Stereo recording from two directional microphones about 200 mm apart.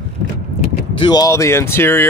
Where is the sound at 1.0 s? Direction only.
20° left (ahead or behind).